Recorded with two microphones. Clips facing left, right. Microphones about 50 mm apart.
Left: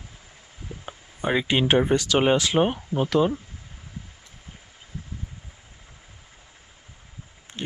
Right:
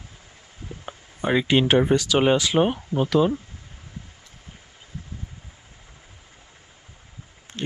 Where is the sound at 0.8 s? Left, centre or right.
Centre.